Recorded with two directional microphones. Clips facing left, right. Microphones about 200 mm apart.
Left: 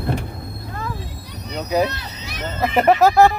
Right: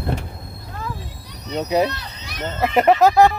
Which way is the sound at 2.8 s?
10° left (ahead or behind).